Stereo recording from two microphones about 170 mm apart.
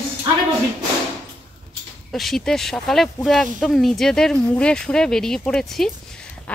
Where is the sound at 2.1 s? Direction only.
Centre (ahead or behind).